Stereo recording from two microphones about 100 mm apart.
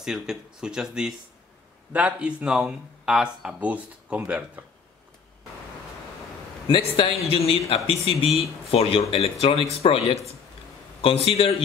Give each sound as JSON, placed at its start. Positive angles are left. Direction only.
{"t": 0.0, "sound": "speech", "side_deg": -5}
{"t": 6.7, "sound": "a man's voice", "side_deg": 75}